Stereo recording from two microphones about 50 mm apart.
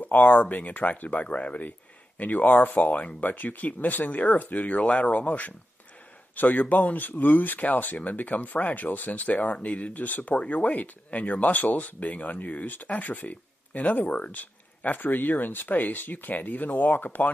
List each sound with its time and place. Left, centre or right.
0.0 s speech: left